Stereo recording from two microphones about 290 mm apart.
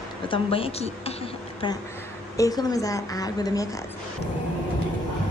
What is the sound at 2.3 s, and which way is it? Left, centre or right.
A woman's voice, centre.